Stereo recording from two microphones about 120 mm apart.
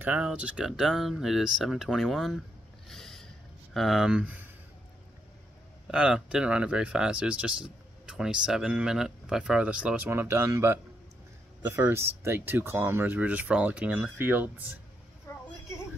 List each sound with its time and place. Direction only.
0.0 s speech: 10° right (ahead or behind)
2.9 s a sound: 5° left (ahead or behind)
3.7 s speech: centre (ahead or behind)
5.9 s speech: 5° right (ahead or behind)